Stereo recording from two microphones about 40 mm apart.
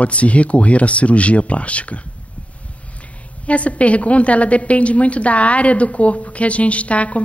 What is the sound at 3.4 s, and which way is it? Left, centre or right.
A woman's voice, left.